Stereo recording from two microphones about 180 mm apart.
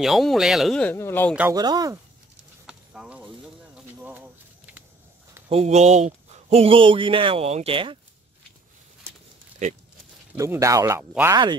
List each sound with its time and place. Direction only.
0.0 s speech: centre (ahead or behind)
1.5 s speech: 20° right (ahead or behind)
2.6 s a sound: 5° right (ahead or behind)
5.5 s speech: 35° right (ahead or behind)
9.6 s speech: 40° right (ahead or behind)
10.3 s speech: 15° right (ahead or behind)